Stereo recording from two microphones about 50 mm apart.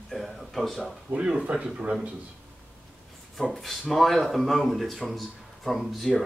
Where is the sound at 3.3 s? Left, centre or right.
Centre.